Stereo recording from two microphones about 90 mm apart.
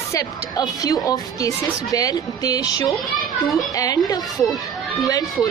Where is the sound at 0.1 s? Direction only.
45° left (ahead or behind).